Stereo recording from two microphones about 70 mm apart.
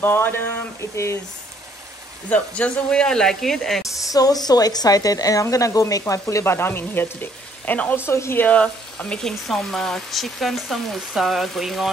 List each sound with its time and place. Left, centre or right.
0.0 s frying: left
2.2 s speech: left; by 3.8 s centre
3.8 s speech: left
6.4 s frying: left
8.0 s frying: left
8.5 s speech: centre
9.2 s speech: centre